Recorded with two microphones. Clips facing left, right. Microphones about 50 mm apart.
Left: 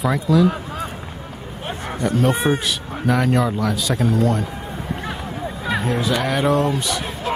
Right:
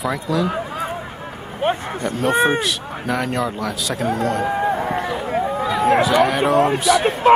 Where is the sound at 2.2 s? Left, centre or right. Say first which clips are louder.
Right 4 dB; centre.